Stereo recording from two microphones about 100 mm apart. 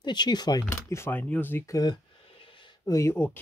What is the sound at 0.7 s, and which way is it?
Speech, 25° left (ahead or behind).